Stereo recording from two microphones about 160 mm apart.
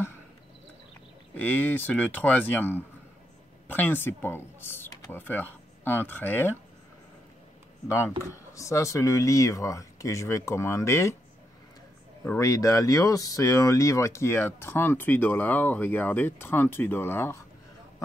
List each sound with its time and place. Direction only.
1.3 s speech: 10° left (ahead or behind)
8.2 s speech: 15° left (ahead or behind)
12.4 s speech: 20° left (ahead or behind)